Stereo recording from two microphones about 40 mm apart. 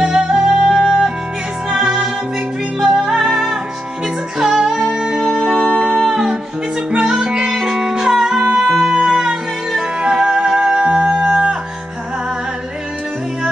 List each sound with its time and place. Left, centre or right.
0.0 s music: centre
1.7 s music: centre
5.2 s music: centre; by 11.5 s right